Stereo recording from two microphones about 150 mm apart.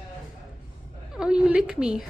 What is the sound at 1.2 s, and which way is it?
Speech, 5° right (ahead or behind).